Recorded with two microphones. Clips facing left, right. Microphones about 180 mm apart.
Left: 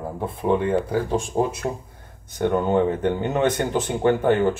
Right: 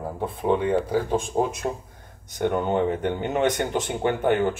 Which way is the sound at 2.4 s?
15° right (ahead or behind).